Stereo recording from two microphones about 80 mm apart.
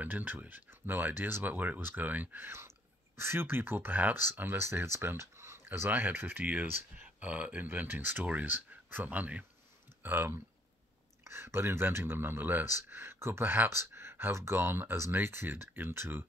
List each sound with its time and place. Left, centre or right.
0.0 s speech: right
5.7 s speech: right